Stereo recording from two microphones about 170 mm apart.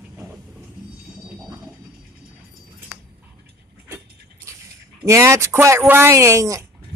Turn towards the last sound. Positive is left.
turn(degrees=-20)  # may be behind; listen again after turning